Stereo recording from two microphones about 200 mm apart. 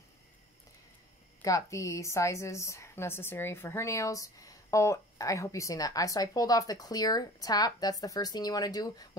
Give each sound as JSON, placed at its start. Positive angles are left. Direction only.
{"t": 1.4, "sound": "a woman's voice", "side_deg": 15}